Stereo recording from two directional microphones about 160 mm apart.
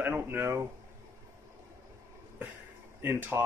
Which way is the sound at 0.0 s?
10° right (ahead or behind).